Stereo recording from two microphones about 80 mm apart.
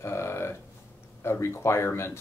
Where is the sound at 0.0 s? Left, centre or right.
Left.